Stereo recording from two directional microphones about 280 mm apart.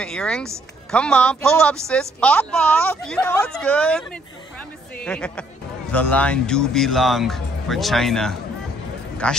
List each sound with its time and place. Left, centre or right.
0.0 s a woman's voice: centre